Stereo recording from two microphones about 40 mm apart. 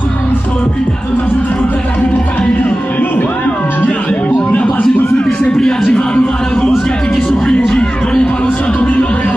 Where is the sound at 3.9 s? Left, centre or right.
Left.